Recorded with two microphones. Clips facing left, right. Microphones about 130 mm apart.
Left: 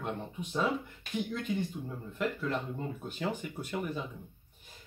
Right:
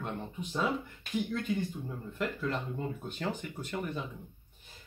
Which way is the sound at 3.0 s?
5° left (ahead or behind).